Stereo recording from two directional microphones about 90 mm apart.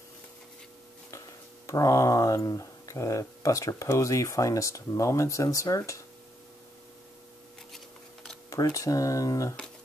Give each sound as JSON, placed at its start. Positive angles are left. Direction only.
{"t": 1.1, "sound": "speech", "side_deg": 35}
{"t": 7.7, "sound": "a sound", "side_deg": 5}
{"t": 8.5, "sound": "speech", "side_deg": 40}